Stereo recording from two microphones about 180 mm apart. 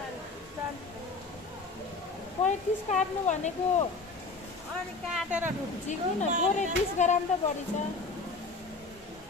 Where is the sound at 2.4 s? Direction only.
40° left (ahead or behind).